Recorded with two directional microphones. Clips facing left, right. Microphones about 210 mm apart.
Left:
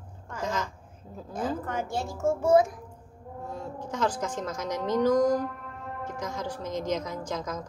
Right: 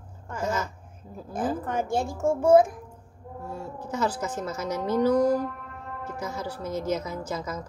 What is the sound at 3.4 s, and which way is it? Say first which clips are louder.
A woman's voice: right 1 dB; 10° right (ahead or behind).